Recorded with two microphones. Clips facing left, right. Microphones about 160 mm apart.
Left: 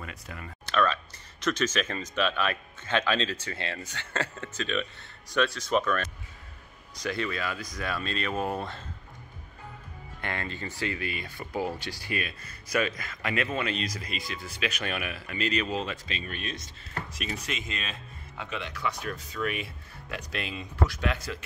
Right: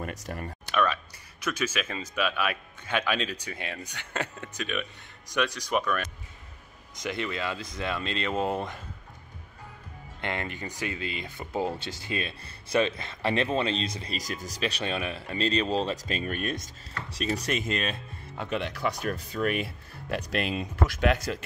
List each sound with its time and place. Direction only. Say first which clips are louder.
0.0 s speech: right 6 dB; 45° right (ahead or behind)
0.7 s speech: left 1 dB; 15° right (ahead or behind)
10.2 s speech: right 2 dB; 20° right (ahead or behind); by 16.7 s 50° right (ahead or behind)
17.1 s speech: right 9 dB; 35° right (ahead or behind)
17.5 s speech: right 7 dB; 45° right (ahead or behind)